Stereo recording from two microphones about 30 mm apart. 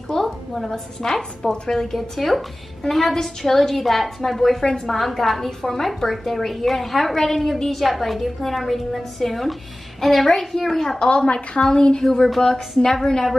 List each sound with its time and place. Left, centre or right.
0.1 s a woman's voice: centre
2.0 s a woman's voice: centre
4.6 s a woman's voice: centre
4.9 s a woman's voice: centre
11.1 s a woman's voice: left
11.6 s a woman's voice: left
12.0 s a woman's voice: centre